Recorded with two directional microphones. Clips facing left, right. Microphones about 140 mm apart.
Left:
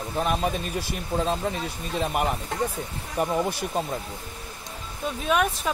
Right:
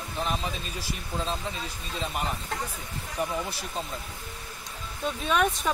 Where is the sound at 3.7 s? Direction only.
55° left (ahead or behind).